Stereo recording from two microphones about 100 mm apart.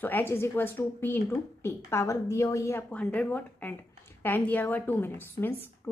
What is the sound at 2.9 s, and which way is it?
A woman's voice, 10° left (ahead or behind).